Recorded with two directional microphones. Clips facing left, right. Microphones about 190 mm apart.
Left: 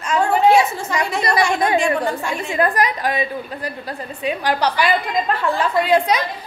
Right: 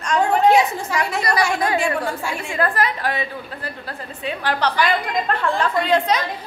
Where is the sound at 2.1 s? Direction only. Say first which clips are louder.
Left 3 dB; 10° right (ahead or behind).